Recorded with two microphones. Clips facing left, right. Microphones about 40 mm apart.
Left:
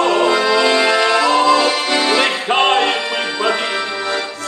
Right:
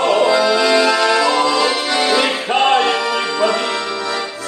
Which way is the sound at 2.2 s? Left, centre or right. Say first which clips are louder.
Left 1 dB; left.